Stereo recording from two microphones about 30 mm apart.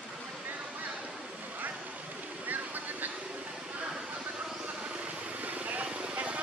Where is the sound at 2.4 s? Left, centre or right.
Right.